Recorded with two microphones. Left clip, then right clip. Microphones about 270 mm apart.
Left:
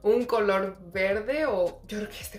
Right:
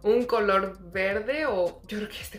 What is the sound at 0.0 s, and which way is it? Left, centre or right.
Speech, centre.